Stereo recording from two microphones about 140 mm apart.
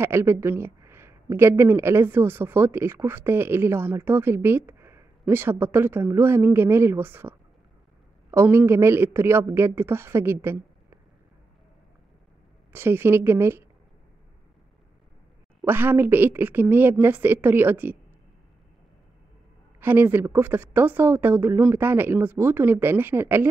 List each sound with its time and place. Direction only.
0.0 s speech: 20° right (ahead or behind)
12.7 s speech: 15° right (ahead or behind)
15.6 s speech: 15° right (ahead or behind)
19.8 s speech: 15° right (ahead or behind)